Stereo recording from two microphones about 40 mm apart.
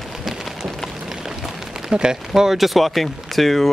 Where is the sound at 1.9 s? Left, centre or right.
Centre.